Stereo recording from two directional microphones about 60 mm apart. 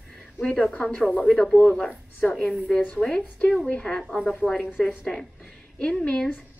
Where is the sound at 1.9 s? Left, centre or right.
Left.